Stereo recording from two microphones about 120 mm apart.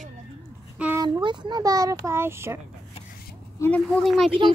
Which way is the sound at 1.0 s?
40° right (ahead or behind).